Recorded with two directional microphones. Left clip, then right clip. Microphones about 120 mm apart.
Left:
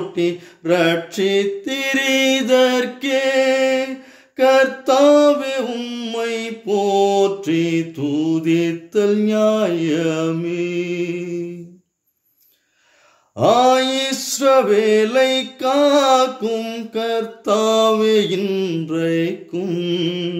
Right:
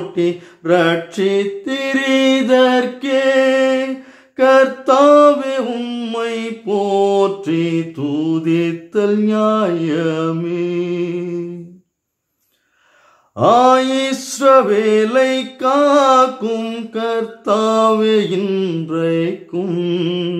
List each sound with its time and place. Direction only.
0.1 s male singing: 15° left (ahead or behind)
4.4 s a sound: 15° left (ahead or behind)
13.4 s male singing: 15° left (ahead or behind)